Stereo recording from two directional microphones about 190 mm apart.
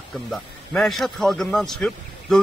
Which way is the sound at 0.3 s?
Centre (ahead or behind).